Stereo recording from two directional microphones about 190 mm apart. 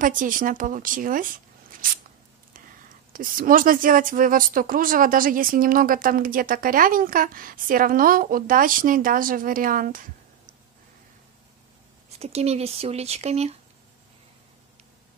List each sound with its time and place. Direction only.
0.0 s speech: 45° right (ahead or behind)
3.1 s speech: 45° right (ahead or behind)
12.2 s speech: 35° right (ahead or behind)